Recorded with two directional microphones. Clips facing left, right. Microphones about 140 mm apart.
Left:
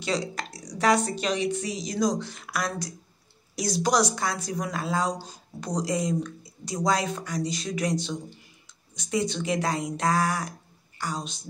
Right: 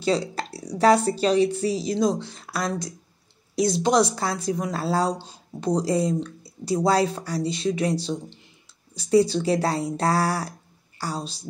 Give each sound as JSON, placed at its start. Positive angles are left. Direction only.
{"t": 0.0, "sound": "speech", "side_deg": -30}